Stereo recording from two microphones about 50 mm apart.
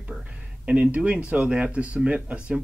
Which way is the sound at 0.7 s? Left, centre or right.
Right.